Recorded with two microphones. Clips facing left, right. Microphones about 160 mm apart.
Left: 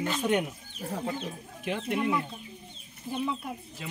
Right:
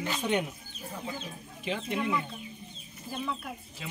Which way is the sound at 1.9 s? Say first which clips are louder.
Left 3 dB; 5° left (ahead or behind).